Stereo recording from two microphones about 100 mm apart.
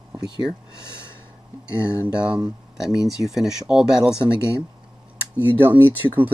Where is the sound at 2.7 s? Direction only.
5° right (ahead or behind).